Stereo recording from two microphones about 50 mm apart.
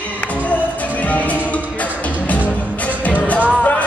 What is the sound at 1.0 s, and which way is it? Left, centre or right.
Music, left.